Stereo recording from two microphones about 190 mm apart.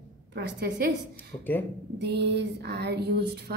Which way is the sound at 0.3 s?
60° right (ahead or behind).